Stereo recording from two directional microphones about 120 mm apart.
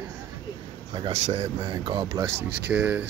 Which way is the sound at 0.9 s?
40° right (ahead or behind).